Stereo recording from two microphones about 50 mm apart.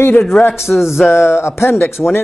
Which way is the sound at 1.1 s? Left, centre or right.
Left.